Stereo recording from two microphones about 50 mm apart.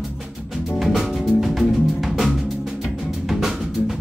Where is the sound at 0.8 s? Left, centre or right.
Centre.